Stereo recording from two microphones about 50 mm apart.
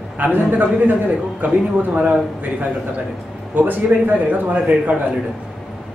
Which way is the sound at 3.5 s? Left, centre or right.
Right.